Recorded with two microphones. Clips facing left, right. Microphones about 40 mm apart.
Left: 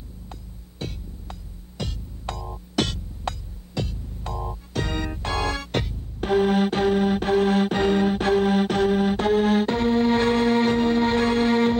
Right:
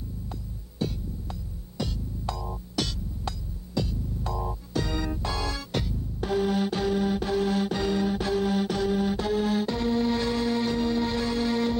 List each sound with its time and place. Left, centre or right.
0.3 s throbbing: left
1.8 s music: left